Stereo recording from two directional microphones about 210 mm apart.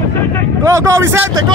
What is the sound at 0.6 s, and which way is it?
Speech, 15° right (ahead or behind).